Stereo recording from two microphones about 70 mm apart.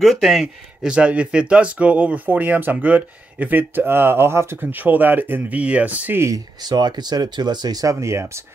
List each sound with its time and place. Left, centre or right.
0.0 s speech: centre; by 4.6 s right
4.6 s speech: right
6.3 s speech: right